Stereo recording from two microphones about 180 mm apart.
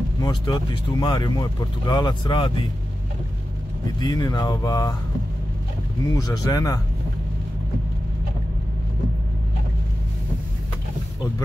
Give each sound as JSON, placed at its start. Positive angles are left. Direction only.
{"t": 0.2, "sound": "speech", "side_deg": 25}
{"t": 4.0, "sound": "speech", "side_deg": 20}
{"t": 6.1, "sound": "speech", "side_deg": 20}